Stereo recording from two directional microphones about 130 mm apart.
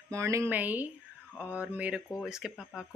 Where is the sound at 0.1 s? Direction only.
25° right (ahead or behind).